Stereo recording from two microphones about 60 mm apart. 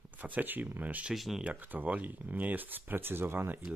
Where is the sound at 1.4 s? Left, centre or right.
Right.